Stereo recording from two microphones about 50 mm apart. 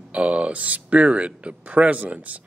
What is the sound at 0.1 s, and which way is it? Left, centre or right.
Speech, right.